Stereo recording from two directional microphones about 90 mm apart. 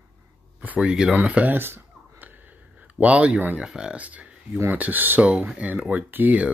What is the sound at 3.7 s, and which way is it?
Speech, 10° right (ahead or behind).